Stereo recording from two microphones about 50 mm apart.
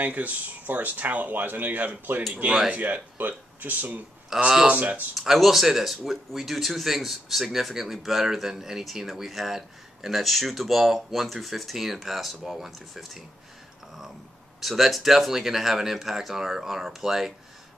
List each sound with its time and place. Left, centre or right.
0.0 s speech: right
4.3 s speech: centre
4.6 s speech: right
5.1 s speech: centre
14.6 s speech: centre